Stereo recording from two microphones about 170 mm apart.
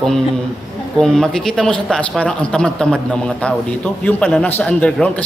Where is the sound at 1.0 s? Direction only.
Centre (ahead or behind).